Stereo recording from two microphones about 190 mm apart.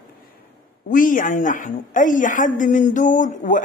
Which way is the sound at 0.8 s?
45° left (ahead or behind).